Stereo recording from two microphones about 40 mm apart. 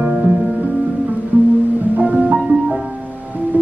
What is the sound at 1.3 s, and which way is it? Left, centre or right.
Music, right.